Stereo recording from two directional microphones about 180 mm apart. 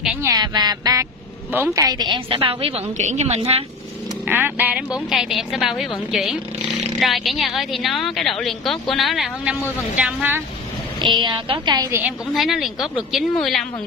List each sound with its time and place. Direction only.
0.2 s a woman's voice: 20° right (ahead or behind)
4.3 s a woman's voice: 10° right (ahead or behind)
11.0 s a woman's voice: 25° right (ahead or behind)
12.0 s a woman's voice: centre (ahead or behind)